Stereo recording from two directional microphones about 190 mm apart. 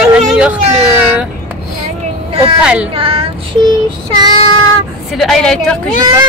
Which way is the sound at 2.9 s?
30° right (ahead or behind).